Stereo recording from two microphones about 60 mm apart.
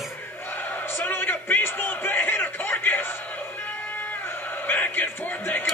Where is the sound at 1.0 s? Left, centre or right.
Left.